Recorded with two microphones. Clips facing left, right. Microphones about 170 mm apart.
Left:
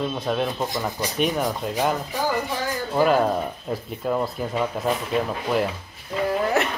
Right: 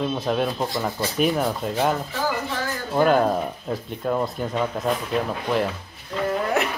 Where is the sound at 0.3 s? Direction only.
Centre (ahead or behind).